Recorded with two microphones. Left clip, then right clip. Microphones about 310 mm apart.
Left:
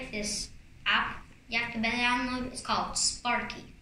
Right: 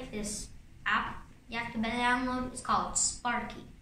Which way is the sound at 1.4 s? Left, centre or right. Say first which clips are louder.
Left 5 dB; centre.